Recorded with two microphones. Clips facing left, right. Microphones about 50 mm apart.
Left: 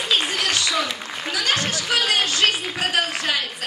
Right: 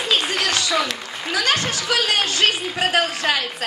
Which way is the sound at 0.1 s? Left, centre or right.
Right.